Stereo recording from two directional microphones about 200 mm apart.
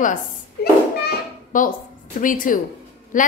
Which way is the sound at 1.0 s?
40° left (ahead or behind).